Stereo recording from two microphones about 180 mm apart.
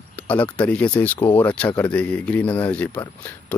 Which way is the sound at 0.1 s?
10° left (ahead or behind).